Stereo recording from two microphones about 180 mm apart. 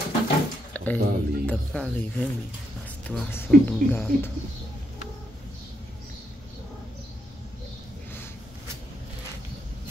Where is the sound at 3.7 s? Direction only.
10° left (ahead or behind).